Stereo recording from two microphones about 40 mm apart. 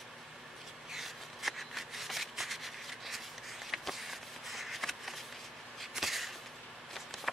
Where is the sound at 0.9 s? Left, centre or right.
Centre.